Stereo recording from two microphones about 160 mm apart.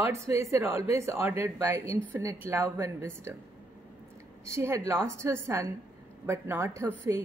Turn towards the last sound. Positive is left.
turn(degrees=-15)  # may be behind; listen again after turning